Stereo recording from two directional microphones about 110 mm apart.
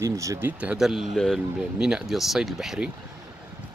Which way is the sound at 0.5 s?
10° right (ahead or behind).